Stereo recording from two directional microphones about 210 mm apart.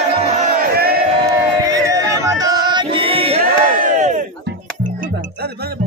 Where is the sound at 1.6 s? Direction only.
15° right (ahead or behind).